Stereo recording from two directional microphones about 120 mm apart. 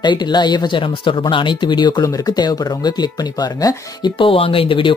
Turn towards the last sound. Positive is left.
turn(degrees=45)  # may be behind; listen again after turning